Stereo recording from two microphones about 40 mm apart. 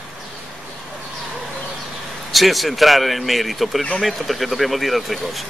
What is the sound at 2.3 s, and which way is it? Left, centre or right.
Speech, centre.